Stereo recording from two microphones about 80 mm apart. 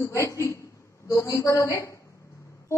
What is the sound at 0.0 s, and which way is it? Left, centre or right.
A woman's voice, left.